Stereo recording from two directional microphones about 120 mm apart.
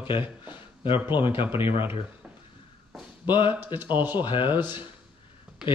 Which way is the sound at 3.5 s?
15° right (ahead or behind).